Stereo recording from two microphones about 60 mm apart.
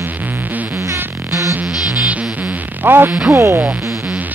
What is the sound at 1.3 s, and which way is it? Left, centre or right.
Music, right.